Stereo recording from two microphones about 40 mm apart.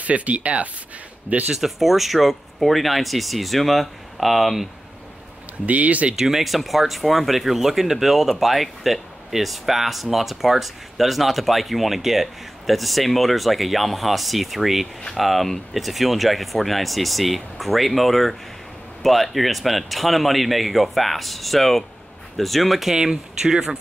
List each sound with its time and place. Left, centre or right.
0.0 s speech: right
1.5 s speech: centre
5.7 s speech: right
6.1 s speech: centre
22.9 s speech: centre